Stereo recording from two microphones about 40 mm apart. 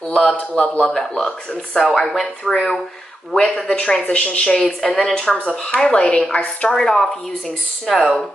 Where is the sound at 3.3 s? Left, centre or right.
Centre.